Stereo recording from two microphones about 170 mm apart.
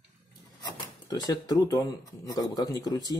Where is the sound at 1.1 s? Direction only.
20° left (ahead or behind).